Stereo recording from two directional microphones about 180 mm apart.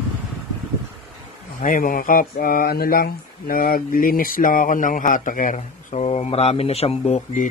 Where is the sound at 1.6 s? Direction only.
50° left (ahead or behind).